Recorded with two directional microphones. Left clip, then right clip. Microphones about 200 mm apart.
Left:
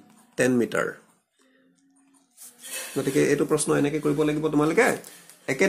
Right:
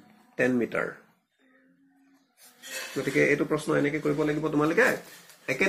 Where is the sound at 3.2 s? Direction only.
55° left (ahead or behind).